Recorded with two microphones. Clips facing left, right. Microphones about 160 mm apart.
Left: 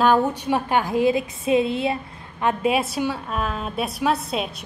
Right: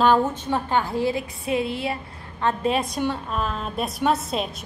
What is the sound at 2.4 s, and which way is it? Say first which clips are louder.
A woman's voice: left 2 dB; 10° left (ahead or behind).